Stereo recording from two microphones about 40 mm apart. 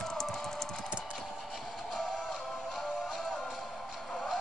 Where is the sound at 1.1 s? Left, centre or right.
Centre.